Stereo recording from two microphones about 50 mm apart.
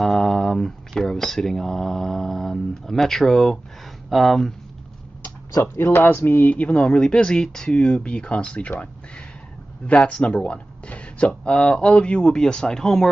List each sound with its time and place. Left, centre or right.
0.0 s speech: centre
5.6 s speech: left
9.8 s speech: left